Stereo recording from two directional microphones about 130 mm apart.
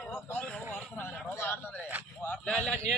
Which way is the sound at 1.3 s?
15° left (ahead or behind).